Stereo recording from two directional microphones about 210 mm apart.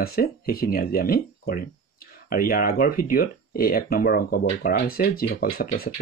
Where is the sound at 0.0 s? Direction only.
45° left (ahead or behind).